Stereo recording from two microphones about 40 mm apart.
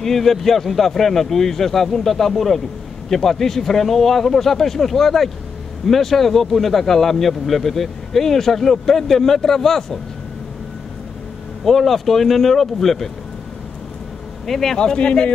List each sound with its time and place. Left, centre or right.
0.0 s speech: centre
11.6 s speech: centre
14.4 s speech: centre
14.8 s a man's voice: left